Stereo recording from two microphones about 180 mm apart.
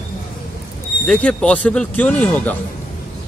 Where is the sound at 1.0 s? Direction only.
5° left (ahead or behind).